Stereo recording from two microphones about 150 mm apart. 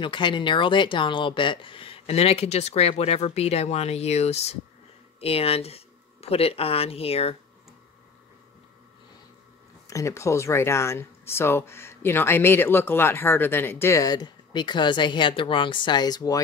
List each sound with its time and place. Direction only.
0.0 s speech: 30° left (ahead or behind)
9.8 s speech: 20° left (ahead or behind)